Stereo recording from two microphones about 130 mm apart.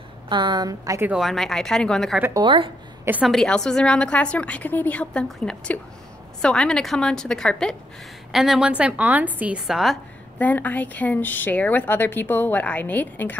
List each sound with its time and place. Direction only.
0.3 s a woman's voice: 35° right (ahead or behind)
1.0 s a woman's voice: centre (ahead or behind)
2.3 s a woman's voice: 40° right (ahead or behind)
3.3 s a woman's voice: 5° left (ahead or behind)
10.4 s a woman's voice: 10° left (ahead or behind)